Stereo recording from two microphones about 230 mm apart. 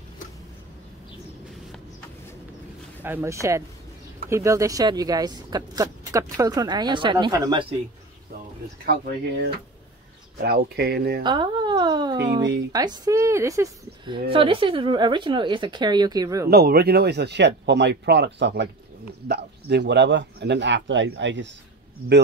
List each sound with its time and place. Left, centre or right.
3.0 s speech: centre
8.8 s speech: right
11.2 s a woman's voice: centre
16.4 s speech: right